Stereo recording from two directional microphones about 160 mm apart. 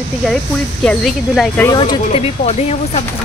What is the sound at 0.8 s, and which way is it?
Speech, centre (ahead or behind).